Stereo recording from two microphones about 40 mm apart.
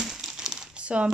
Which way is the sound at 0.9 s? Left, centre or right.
Right.